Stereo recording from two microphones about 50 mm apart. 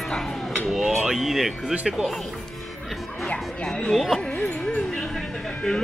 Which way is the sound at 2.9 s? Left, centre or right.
Centre.